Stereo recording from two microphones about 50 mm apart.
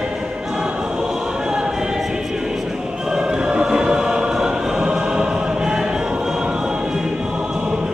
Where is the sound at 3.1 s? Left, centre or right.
Centre.